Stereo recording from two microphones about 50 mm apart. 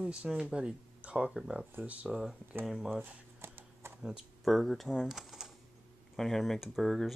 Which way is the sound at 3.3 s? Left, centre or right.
Right.